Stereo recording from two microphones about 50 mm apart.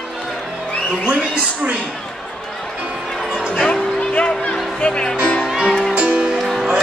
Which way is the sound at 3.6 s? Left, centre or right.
Left.